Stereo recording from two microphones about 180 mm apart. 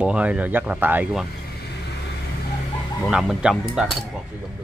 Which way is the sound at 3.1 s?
5° right (ahead or behind).